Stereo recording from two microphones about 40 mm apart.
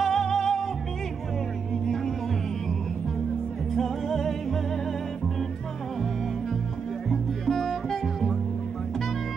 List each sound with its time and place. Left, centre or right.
0.0 s music: centre
3.7 s music: centre
7.1 s music: centre